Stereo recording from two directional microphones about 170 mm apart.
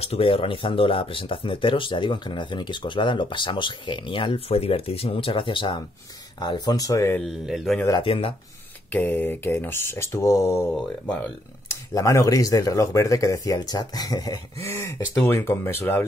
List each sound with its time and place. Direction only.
0.0 s speech: 35° left (ahead or behind); by 7.2 s 20° left (ahead or behind)
7.2 s speech: centre (ahead or behind)
8.0 s speech: 30° left (ahead or behind)
8.9 s speech: 10° left (ahead or behind)
11.9 s speech: 20° left (ahead or behind)